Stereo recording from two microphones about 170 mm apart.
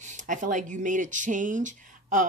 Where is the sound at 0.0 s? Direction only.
45° right (ahead or behind).